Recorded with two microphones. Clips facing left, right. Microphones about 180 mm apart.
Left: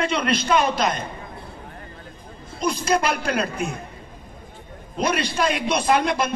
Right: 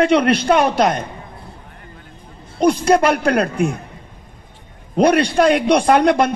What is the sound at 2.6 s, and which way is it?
Speech, 70° right (ahead or behind).